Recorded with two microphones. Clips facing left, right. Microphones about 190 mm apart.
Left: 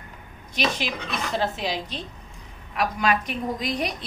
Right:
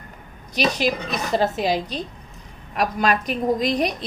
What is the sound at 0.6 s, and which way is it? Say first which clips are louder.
A woman's voice: right 5 dB; 40° right (ahead or behind).